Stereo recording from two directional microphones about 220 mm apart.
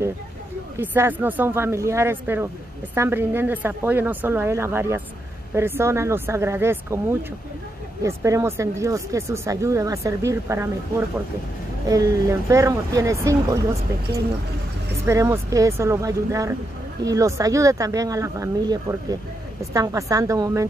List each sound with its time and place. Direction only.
0.7 s speech: 10° right (ahead or behind)
11.9 s speech: 15° right (ahead or behind)
15.0 s speech: 10° right (ahead or behind)